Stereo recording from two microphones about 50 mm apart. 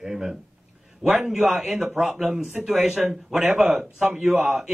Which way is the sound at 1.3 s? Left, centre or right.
Centre.